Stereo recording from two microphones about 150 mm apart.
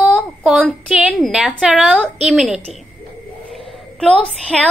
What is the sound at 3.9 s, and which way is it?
Speech, 5° left (ahead or behind).